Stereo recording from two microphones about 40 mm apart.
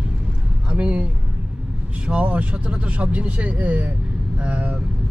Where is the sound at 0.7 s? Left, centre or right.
Right.